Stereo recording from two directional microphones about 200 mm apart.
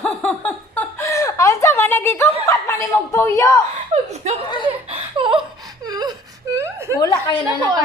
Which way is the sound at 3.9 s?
35° right (ahead or behind).